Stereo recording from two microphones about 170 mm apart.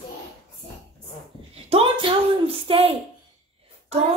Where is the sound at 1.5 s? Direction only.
35° right (ahead or behind).